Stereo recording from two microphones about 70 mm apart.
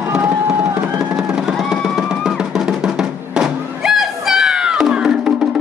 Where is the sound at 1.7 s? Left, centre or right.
Centre.